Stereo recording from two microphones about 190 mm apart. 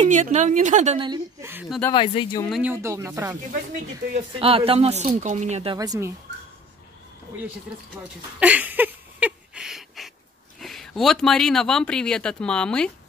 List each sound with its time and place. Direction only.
0.0 s speech: 40° right (ahead or behind)
0.9 s a woman's voice: 25° right (ahead or behind)
1.4 s speech: 10° right (ahead or behind)
1.9 s speech: 20° left (ahead or behind)
2.6 s speech: 10° right (ahead or behind)
4.1 s speech: 30° right (ahead or behind)
5.8 s speech: 15° right (ahead or behind)
8.0 s a sound: 5° right (ahead or behind)
10.6 s speech: centre (ahead or behind)